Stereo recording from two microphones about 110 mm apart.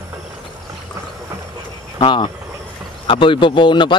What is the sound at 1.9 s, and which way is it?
Speech, 50° left (ahead or behind).